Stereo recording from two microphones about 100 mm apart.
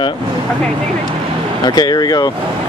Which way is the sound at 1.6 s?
45° left (ahead or behind).